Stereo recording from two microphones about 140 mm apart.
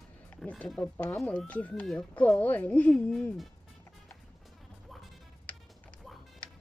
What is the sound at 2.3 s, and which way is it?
Speech, 10° left (ahead or behind).